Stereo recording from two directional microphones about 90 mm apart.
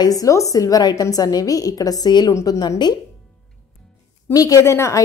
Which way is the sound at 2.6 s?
50° left (ahead or behind).